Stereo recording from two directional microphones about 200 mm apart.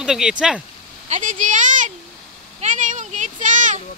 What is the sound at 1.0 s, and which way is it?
A child's voice, 40° right (ahead or behind).